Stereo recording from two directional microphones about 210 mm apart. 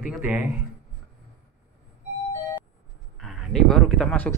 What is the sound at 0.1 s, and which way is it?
Speech, 10° right (ahead or behind).